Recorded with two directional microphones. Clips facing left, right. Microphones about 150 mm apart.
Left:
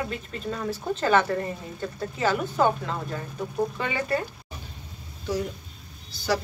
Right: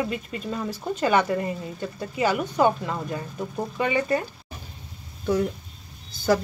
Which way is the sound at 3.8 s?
20° right (ahead or behind).